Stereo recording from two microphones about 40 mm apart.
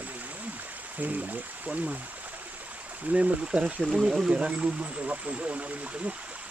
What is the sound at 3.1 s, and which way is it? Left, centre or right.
Speech, right.